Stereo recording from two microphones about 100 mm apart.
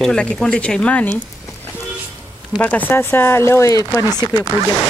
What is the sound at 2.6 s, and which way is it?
Speech, 20° left (ahead or behind).